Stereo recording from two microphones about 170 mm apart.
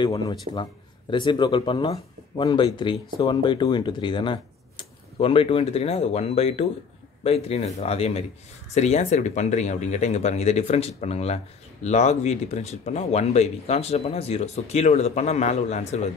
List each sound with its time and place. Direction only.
0.0 s speech: 25° left (ahead or behind); by 16.1 s 40° left (ahead or behind)